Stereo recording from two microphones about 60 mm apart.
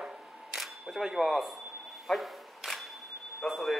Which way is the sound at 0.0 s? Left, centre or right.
Centre.